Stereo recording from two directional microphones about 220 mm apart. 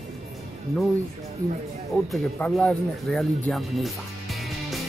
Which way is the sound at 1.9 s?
5° left (ahead or behind).